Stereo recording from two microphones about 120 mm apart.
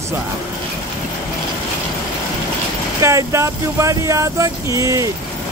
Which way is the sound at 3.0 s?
25° right (ahead or behind).